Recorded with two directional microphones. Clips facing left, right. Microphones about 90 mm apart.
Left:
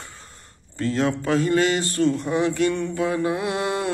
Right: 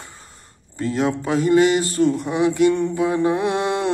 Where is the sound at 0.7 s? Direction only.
15° right (ahead or behind).